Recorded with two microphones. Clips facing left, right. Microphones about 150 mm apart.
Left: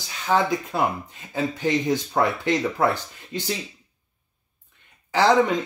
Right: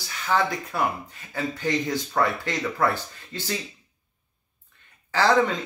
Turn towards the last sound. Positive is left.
turn(degrees=15)  # may be behind; listen again after turning